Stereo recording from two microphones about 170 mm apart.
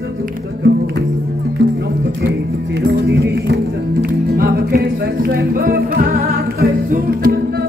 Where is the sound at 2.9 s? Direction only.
75° right (ahead or behind).